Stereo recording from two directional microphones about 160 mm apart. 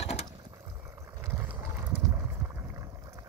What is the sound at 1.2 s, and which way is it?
Vehicle, 15° right (ahead or behind).